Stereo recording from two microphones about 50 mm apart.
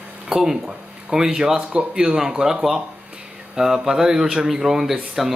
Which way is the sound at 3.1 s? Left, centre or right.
Centre.